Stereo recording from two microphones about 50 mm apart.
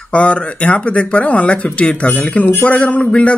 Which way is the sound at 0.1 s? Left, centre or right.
Left.